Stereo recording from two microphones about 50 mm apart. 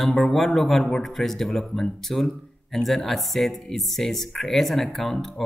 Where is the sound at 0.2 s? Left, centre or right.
Centre.